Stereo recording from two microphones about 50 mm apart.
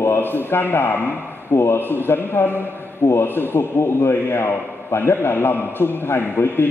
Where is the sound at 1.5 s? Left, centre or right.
Left.